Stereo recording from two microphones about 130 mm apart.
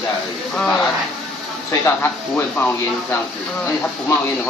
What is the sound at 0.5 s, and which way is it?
Speech, 5° left (ahead or behind).